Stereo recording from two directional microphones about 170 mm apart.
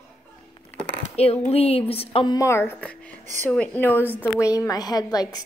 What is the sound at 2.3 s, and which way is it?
A woman's voice, 15° left (ahead or behind).